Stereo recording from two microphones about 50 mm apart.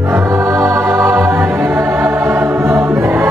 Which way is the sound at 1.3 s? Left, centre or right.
Right.